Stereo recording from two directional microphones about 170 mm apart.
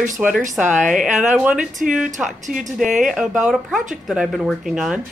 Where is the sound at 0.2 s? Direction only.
5° right (ahead or behind).